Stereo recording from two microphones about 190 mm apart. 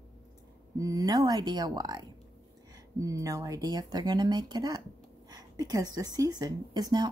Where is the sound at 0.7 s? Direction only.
20° right (ahead or behind).